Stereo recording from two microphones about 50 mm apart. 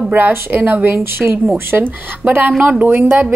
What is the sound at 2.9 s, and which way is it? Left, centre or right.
Speech, right.